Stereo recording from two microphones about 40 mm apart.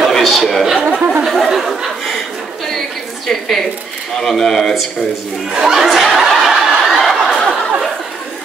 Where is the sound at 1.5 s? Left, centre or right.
Centre.